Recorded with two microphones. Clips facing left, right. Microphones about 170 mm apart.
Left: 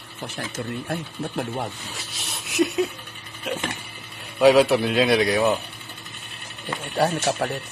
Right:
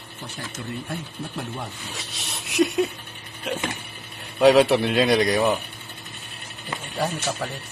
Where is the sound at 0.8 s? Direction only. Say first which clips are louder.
Left 4 dB; 50° left (ahead or behind).